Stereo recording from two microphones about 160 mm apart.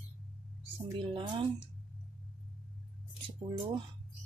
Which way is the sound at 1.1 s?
30° right (ahead or behind).